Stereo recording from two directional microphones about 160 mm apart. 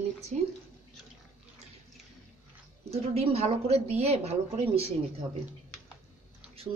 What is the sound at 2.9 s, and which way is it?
A woman's voice, 40° right (ahead or behind).